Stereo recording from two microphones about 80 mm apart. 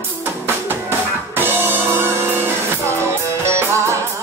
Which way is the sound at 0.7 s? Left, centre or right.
Right.